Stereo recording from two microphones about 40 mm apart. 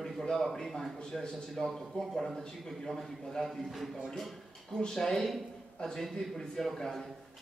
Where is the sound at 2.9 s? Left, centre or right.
Centre.